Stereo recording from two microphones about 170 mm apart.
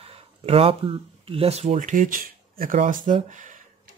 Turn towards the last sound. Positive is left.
turn(degrees=-50)  # may be behind; listen again after turning